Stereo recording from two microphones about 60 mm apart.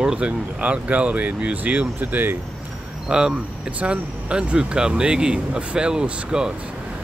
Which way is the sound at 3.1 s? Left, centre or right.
Centre.